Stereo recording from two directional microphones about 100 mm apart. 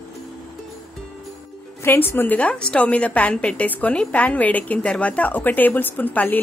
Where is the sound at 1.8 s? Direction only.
25° left (ahead or behind).